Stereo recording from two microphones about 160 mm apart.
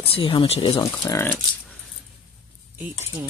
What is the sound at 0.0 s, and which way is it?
Speech, 35° left (ahead or behind).